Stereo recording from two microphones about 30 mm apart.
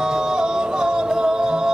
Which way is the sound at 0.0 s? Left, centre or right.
Right.